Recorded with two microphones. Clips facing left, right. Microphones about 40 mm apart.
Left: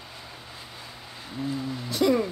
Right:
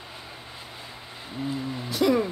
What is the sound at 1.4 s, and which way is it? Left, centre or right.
Speech, right.